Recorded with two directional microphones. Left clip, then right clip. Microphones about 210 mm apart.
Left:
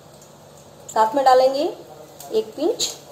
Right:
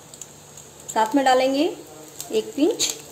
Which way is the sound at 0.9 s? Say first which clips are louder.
Left 3 dB; 35° right (ahead or behind).